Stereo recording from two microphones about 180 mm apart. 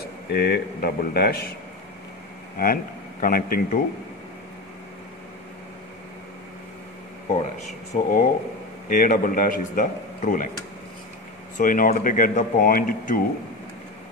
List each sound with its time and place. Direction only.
0.3 s speech: 60° left (ahead or behind)
2.6 s speech: 50° left (ahead or behind)
7.9 s speech: 50° left (ahead or behind)
11.5 s speech: 50° left (ahead or behind)